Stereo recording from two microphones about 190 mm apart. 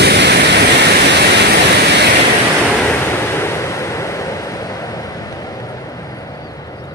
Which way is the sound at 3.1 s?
15° left (ahead or behind).